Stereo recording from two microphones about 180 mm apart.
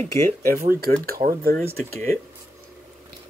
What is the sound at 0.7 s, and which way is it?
Speech, 55° right (ahead or behind).